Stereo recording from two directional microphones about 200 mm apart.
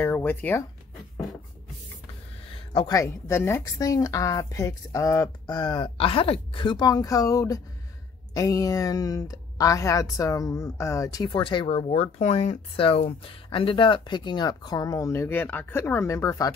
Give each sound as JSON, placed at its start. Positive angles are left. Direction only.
{"t": 0.0, "sound": "speech", "side_deg": 10}
{"t": 2.9, "sound": "a woman's voice", "side_deg": 15}